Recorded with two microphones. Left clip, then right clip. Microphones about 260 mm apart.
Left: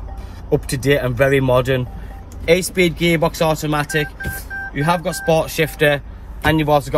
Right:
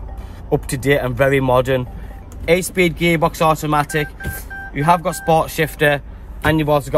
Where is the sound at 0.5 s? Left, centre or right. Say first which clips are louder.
Even; right.